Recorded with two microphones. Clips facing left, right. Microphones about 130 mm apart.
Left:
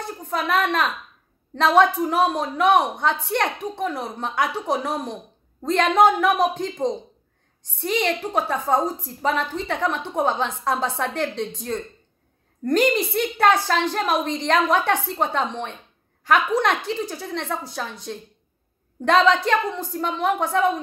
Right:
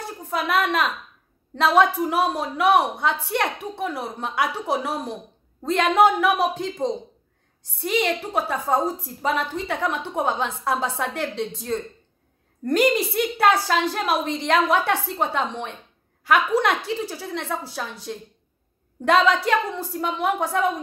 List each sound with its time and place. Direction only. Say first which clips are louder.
0.3 s a woman's voice: even; 10° right (ahead or behind)
7.8 s a woman's voice: even; 10° right (ahead or behind)